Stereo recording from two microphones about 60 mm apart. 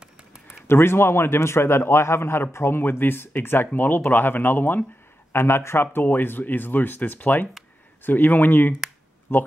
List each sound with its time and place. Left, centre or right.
0.0 s a sound: centre
0.7 s a man's voice: left
5.3 s a man's voice: left